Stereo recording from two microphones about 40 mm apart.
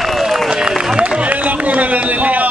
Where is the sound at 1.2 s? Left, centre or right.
Right.